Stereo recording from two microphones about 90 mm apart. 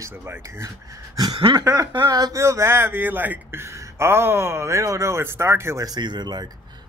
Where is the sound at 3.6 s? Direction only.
30° right (ahead or behind).